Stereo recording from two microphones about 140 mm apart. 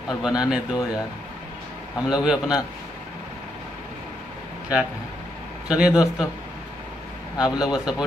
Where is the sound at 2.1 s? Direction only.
5° right (ahead or behind).